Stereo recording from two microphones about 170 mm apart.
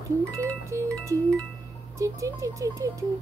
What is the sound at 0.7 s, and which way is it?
Speech, 20° right (ahead or behind).